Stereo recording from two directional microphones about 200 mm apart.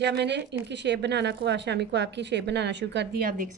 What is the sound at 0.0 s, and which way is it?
A woman's voice, 60° right (ahead or behind).